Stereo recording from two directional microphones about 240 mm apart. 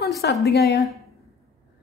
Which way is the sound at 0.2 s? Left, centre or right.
Left.